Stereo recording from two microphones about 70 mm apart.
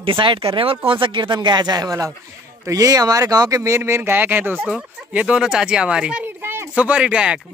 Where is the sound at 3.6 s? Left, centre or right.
Right.